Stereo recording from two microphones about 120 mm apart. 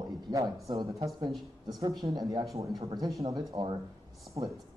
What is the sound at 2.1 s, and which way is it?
Speech, 30° right (ahead or behind).